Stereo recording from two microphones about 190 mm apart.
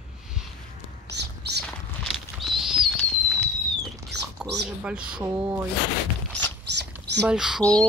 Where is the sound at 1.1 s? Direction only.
60° right (ahead or behind).